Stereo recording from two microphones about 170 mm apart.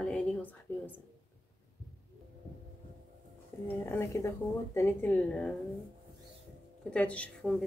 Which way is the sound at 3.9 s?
15° left (ahead or behind).